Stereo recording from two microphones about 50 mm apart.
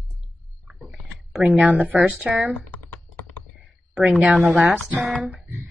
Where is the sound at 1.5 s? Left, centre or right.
Right.